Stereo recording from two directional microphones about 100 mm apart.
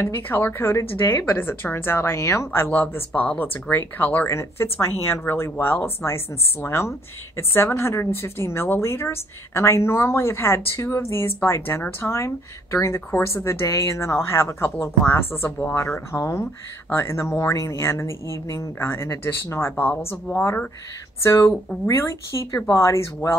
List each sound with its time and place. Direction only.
0.0 s speech: 25° left (ahead or behind)